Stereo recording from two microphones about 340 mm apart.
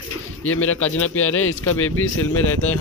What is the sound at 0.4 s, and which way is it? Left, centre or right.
Speech, left.